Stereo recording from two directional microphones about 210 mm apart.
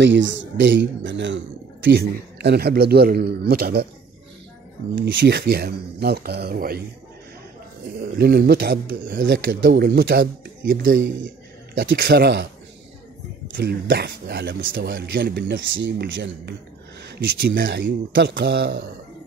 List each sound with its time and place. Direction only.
0.0 s speech: 60° right (ahead or behind)
4.9 s speech: 55° right (ahead or behind)
8.0 s speech: 45° right (ahead or behind)
13.6 s speech: 55° right (ahead or behind)